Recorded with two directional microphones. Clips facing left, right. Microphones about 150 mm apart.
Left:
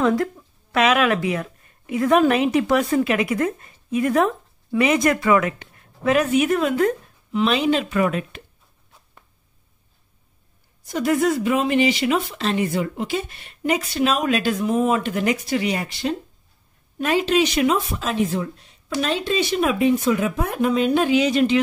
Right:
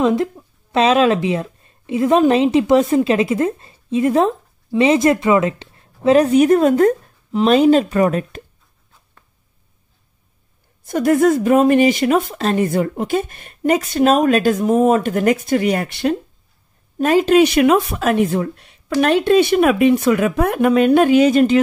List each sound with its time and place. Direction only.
0.0 s speech: 25° right (ahead or behind); by 8.4 s 40° right (ahead or behind)
10.8 s speech: 55° right (ahead or behind)
17.0 s speech: 45° right (ahead or behind)